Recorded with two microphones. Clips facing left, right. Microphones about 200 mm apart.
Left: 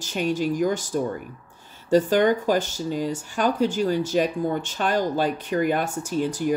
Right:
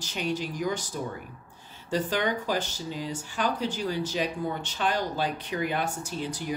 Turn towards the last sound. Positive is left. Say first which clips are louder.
# left 9 dB
turn(degrees=50)  # may be behind; listen again after turning